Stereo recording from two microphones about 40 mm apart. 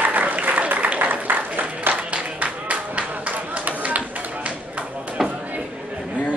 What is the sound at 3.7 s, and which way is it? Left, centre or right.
Run, right.